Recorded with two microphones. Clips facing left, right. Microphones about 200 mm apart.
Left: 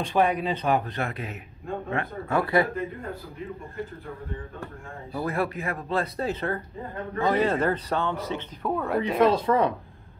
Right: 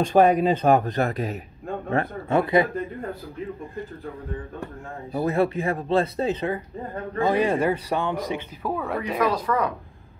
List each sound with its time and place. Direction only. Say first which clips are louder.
0.0 s speech: right 6 dB; 45° right (ahead or behind)
2.2 s speech: right 2 dB; 20° right (ahead or behind)
5.1 s a man's voice: right 6 dB; 25° right (ahead or behind)
8.6 s speech: left 2 dB; centre (ahead or behind)
9.2 s speech: left 3 dB; 25° left (ahead or behind)